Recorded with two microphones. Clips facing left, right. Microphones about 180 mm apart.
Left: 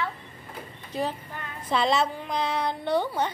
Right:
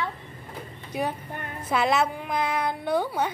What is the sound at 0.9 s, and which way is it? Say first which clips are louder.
A woman's voice: right 1 dB; 10° right (ahead or behind).